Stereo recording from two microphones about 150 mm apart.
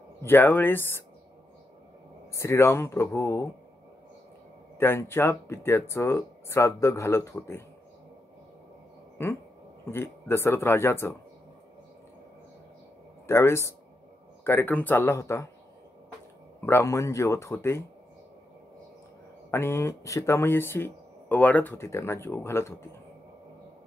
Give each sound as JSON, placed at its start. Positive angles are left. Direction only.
{"t": 0.2, "sound": "speech", "side_deg": 15}
{"t": 2.3, "sound": "speech", "side_deg": 20}
{"t": 4.7, "sound": "speech", "side_deg": 15}
{"t": 9.2, "sound": "speech", "side_deg": 20}
{"t": 13.3, "sound": "speech", "side_deg": 20}
{"t": 16.6, "sound": "speech", "side_deg": 20}
{"t": 19.5, "sound": "speech", "side_deg": 15}